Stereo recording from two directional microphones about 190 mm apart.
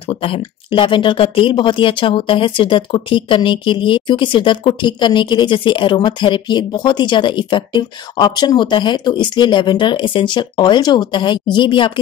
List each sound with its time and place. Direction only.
0.1 s speech: 30° left (ahead or behind)